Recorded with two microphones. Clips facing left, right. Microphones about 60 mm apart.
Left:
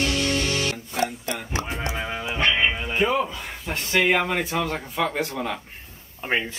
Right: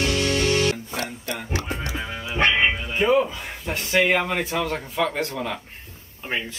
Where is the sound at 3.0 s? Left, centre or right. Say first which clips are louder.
Right 4 dB; centre.